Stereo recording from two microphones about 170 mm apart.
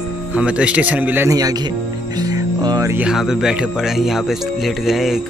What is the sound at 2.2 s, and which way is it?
Music, 20° right (ahead or behind).